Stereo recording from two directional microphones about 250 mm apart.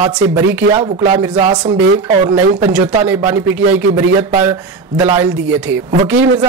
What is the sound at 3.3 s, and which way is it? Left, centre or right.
Speech, centre.